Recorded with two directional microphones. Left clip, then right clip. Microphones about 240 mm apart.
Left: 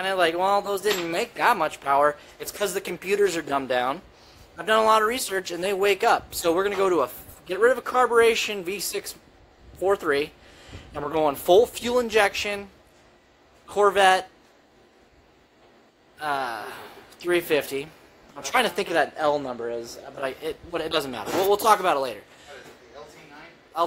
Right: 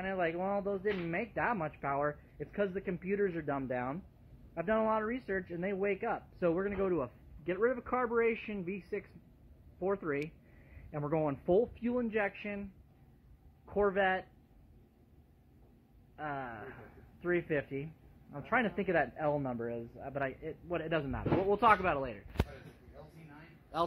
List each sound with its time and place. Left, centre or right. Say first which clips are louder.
0.0 s speech: left 13 dB; centre
9.8 s speech: left 12 dB; centre
13.7 s speech: left 13 dB; centre
16.2 s speech: left 13 dB; centre
19.1 s a man's voice: left 10 dB; centre
20.2 s speech: left 9 dB; centre